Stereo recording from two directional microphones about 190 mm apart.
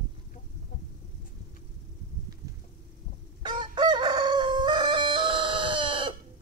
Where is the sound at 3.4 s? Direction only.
25° right (ahead or behind).